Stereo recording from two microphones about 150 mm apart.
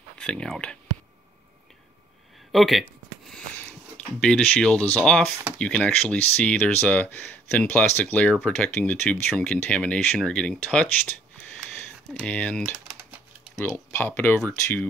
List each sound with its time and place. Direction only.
0.2 s speech: 5° left (ahead or behind)
2.5 s speech: centre (ahead or behind)
13.9 s speech: 15° left (ahead or behind)